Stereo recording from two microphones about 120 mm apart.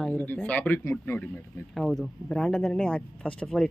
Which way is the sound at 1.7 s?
Centre (ahead or behind).